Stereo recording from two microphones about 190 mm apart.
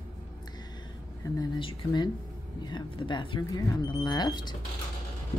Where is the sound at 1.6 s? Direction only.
25° left (ahead or behind).